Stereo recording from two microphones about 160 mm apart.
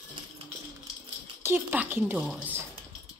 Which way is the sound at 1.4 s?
15° right (ahead or behind).